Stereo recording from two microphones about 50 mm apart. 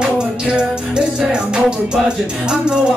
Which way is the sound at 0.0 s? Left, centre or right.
Centre.